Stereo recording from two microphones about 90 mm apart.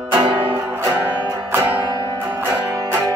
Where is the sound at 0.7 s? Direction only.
25° right (ahead or behind).